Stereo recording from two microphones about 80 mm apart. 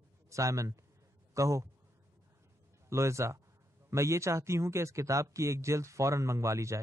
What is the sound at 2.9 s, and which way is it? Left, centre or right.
A man's voice, right.